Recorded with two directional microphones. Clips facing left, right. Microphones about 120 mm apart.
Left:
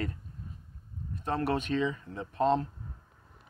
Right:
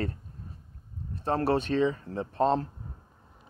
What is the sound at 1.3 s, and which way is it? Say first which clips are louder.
Speech: right 4 dB; 35° right (ahead or behind).